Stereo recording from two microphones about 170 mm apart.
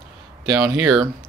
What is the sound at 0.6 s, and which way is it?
Speech, 10° right (ahead or behind).